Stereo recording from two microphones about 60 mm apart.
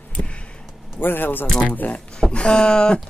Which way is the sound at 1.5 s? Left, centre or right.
Centre.